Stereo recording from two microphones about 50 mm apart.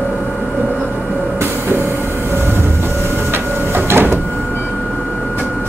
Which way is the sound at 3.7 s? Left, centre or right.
Right.